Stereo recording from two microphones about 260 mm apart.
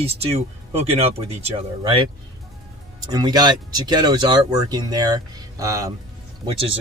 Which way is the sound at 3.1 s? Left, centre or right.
Centre.